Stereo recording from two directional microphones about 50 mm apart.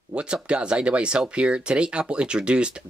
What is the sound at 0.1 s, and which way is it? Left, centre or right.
Speech, right.